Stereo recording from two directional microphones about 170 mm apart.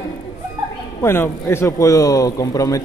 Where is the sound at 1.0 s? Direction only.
15° left (ahead or behind).